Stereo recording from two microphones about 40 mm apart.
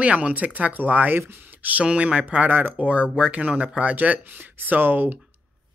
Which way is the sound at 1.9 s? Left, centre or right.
Right.